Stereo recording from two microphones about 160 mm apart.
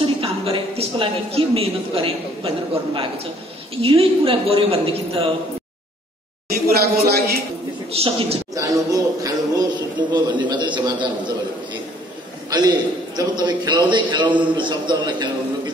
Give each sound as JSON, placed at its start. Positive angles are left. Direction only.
{"t": 0.0, "sound": "a woman's voice", "side_deg": -35}
{"t": 6.5, "sound": "speech", "side_deg": -75}
{"t": 7.9, "sound": "a woman's voice", "side_deg": -40}
{"t": 8.5, "sound": "a man's voice", "side_deg": -20}
{"t": 12.4, "sound": "a man's voice", "side_deg": -25}